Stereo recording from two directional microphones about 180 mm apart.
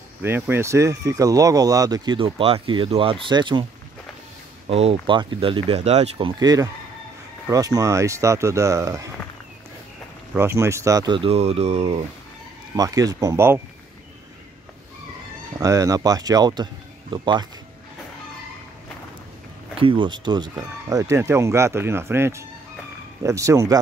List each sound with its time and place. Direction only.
0.2 s speech: 15° right (ahead or behind)
4.6 s speech: 35° right (ahead or behind); by 9.1 s 15° right (ahead or behind)
10.3 s speech: 15° right (ahead or behind); by 12.0 s 35° right (ahead or behind)
12.7 s speech: 20° right (ahead or behind)
15.6 s speech: 20° right (ahead or behind)
19.8 s speech: 30° right (ahead or behind)